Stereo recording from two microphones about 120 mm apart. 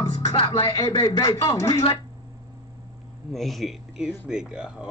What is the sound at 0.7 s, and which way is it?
A man's voice, 30° left (ahead or behind).